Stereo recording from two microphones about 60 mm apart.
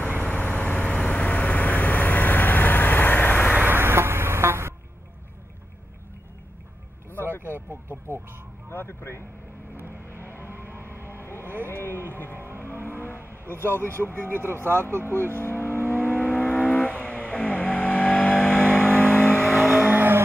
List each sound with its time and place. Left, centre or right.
0.2 s vehicle: left
3.5 s a sound: right
7.1 s vehicle: right
8.7 s speech: left
9.8 s vehicle: right
10.7 s music: right
11.2 s vehicle: left
11.6 s a man's voice: left
12.4 s vehicle: right
13.5 s a man's voice: left
14.3 s speech: right
15.3 s speech: left
16.0 s vehicle: left
19.8 s vehicle: right